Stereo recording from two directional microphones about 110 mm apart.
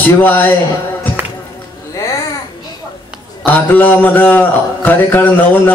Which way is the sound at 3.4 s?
15° left (ahead or behind).